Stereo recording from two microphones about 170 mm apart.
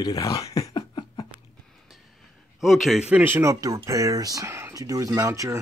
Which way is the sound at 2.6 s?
Centre (ahead or behind).